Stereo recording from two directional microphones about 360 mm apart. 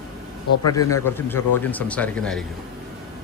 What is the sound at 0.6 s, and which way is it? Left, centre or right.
A man's voice, centre.